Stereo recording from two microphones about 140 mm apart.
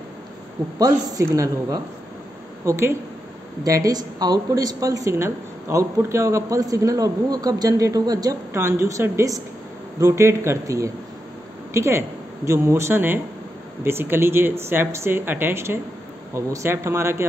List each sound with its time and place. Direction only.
0.7 s speech: 25° right (ahead or behind)